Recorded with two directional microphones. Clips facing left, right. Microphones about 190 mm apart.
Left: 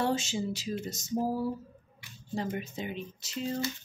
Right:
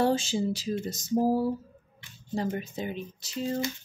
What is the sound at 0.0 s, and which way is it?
Speech, 35° right (ahead or behind).